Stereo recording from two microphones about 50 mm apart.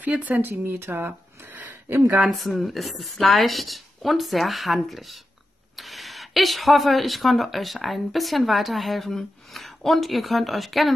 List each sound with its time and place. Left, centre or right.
0.4 s speech: right
2.3 s speech: centre